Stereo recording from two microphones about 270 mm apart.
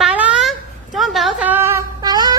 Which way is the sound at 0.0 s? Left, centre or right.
Centre.